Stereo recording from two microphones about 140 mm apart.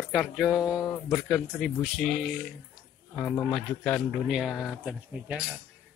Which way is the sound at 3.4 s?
5° left (ahead or behind).